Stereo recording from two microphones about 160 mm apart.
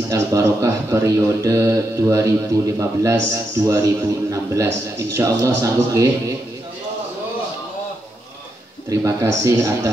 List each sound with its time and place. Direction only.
0.1 s a man's voice: 20° right (ahead or behind)
8.8 s speech: 20° right (ahead or behind)